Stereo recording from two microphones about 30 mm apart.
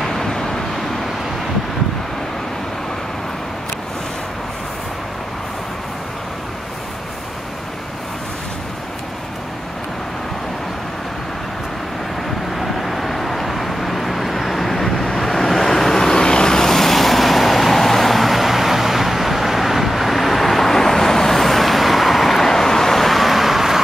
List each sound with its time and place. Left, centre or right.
0.0 s vehicle: centre
12.5 s vehicle: centre
16.0 s vehicle: left
16.5 s vehicle: centre
22.4 s vehicle: centre